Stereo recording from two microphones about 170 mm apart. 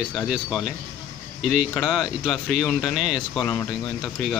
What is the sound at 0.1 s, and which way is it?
Speech, centre (ahead or behind).